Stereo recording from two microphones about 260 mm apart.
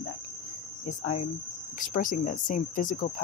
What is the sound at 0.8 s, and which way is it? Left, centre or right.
Speech, left.